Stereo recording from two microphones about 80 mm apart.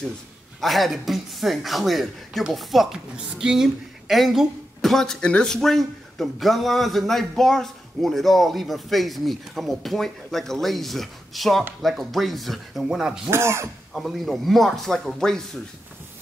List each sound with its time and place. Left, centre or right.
0.6 s a man's voice: centre
13.3 s speech: right
13.9 s a man's voice: centre